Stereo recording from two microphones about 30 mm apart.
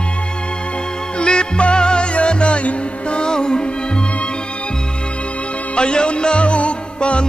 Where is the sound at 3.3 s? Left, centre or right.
Left.